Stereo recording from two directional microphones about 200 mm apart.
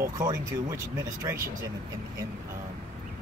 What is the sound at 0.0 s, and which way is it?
Speech, 15° right (ahead or behind).